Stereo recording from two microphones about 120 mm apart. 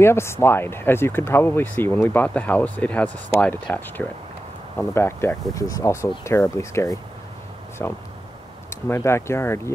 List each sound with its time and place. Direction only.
0.0 s speech: 20° left (ahead or behind)